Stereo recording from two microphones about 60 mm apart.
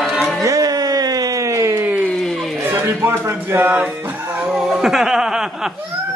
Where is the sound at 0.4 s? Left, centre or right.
Right.